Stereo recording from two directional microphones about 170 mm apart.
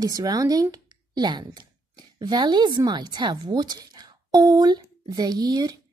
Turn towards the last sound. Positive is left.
turn(degrees=-25)  # may be behind; listen again after turning